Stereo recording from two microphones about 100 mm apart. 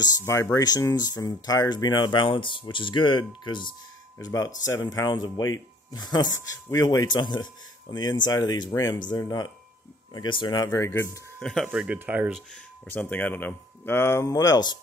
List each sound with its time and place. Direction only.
0.2 s speech: 30° left (ahead or behind); by 3.7 s 50° left (ahead or behind)
4.2 s speech: 35° left (ahead or behind)
10.7 s speech: 30° left (ahead or behind)
11.3 s speech: 5° left (ahead or behind)
11.6 s speech: 10° right (ahead or behind)
12.8 s speech: 20° left (ahead or behind); by 14.8 s 45° left (ahead or behind)